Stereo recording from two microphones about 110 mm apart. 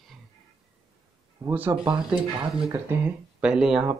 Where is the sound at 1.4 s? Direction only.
30° right (ahead or behind).